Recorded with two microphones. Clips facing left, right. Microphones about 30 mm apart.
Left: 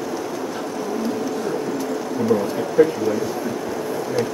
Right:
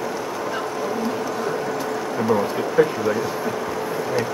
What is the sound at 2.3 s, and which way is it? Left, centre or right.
Speech, centre.